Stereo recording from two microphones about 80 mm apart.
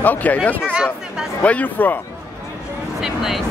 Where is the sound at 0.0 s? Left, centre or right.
Left.